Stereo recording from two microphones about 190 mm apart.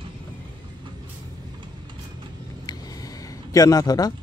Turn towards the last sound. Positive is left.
turn(degrees=20)  # may be behind; listen again after turning